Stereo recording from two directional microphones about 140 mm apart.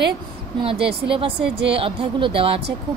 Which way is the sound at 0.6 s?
40° right (ahead or behind).